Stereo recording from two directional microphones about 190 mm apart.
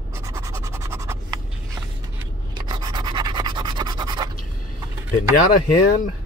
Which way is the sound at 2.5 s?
25° right (ahead or behind).